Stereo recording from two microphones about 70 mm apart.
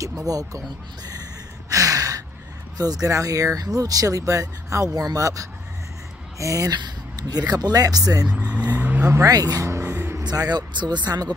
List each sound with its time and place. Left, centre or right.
0.3 s speech: right
1.7 s a sound: right
2.8 s a man's voice: right
6.7 s speech: right
8.3 s speech: centre
8.7 s vehicle: right
9.0 s a man's voice: right
9.3 s speech: right